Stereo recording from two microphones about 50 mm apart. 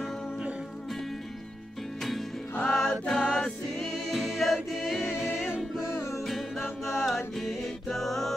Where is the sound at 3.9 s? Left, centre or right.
Centre.